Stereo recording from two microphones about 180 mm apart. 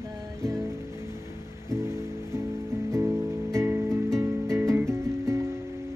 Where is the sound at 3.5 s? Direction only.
15° right (ahead or behind).